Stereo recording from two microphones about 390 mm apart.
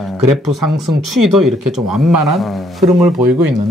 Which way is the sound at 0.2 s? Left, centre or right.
Right.